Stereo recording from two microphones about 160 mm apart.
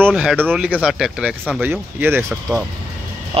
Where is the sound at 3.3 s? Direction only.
35° right (ahead or behind).